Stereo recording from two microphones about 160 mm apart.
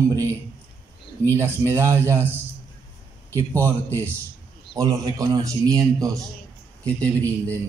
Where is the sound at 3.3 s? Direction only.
15° right (ahead or behind).